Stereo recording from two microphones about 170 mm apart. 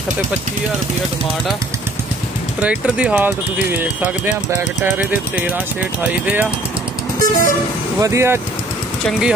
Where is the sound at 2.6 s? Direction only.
5° right (ahead or behind).